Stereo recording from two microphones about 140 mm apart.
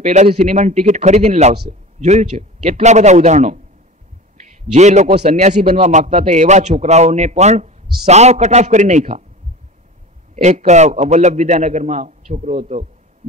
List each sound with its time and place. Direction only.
0.0 s speech: 55° right (ahead or behind)
10.3 s speech: 55° right (ahead or behind)